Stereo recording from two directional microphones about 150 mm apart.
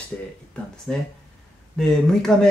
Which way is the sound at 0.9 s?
5° left (ahead or behind).